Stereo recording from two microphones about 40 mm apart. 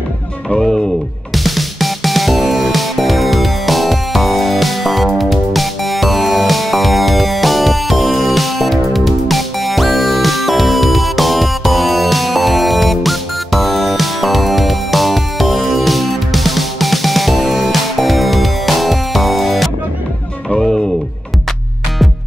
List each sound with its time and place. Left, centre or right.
0.5 s speech: centre
1.3 s music: centre